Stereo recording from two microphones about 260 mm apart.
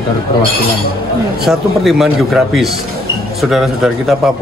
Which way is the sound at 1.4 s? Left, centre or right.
Centre.